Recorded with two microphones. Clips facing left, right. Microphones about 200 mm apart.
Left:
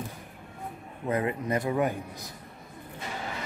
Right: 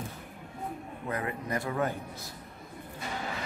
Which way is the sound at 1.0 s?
20° left (ahead or behind).